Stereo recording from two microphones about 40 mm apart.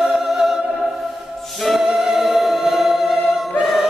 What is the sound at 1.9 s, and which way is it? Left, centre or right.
Music, centre.